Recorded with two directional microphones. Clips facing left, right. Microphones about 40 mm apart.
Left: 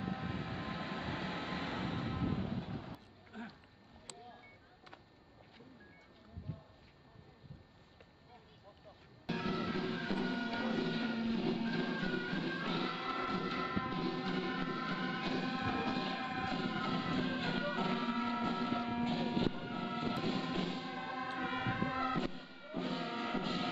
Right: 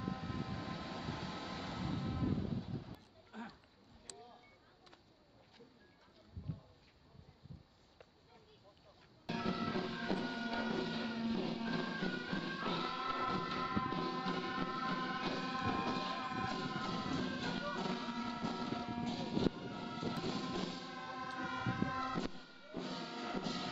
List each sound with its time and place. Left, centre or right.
0.0 s vehicle: left
3.3 s a sound: centre
9.2 s music: centre; by 23.7 s left